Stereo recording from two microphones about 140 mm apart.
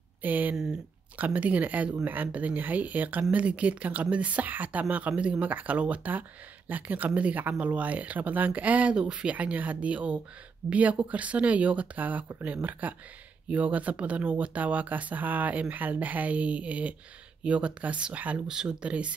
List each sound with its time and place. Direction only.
0.2 s speech: 10° right (ahead or behind)